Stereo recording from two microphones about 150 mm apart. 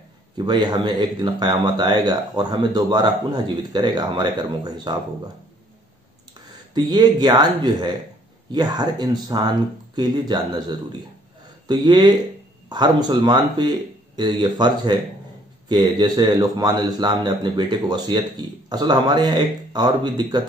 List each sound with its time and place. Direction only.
0.4 s a man's voice: 30° right (ahead or behind)
6.7 s a man's voice: 25° right (ahead or behind)